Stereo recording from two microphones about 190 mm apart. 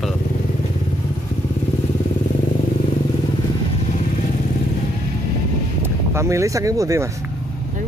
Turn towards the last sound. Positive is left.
turn(degrees=-15)  # may be behind; listen again after turning